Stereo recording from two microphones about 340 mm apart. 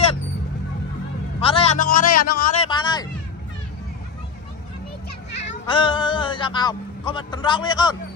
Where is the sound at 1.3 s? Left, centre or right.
Centre.